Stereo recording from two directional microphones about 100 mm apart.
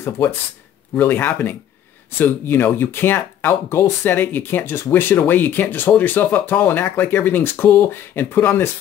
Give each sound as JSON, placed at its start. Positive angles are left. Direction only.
{"t": 0.9, "sound": "speech", "side_deg": 20}